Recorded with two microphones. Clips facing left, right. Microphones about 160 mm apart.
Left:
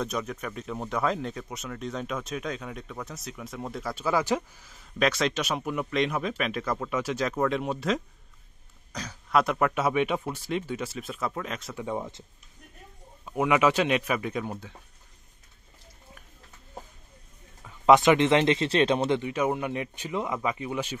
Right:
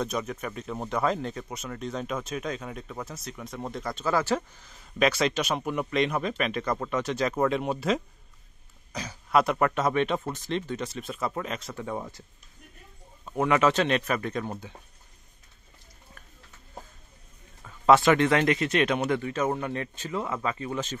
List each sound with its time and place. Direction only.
0.0 s speech: centre (ahead or behind)
11.7 s speech: 15° left (ahead or behind)
13.2 s speech: 5° left (ahead or behind)
17.6 s speech: 15° left (ahead or behind)